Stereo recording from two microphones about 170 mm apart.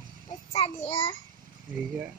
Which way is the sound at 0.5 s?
35° left (ahead or behind).